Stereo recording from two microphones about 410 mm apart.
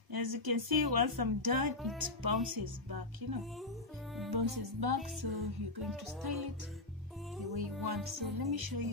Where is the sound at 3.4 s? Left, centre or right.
Centre.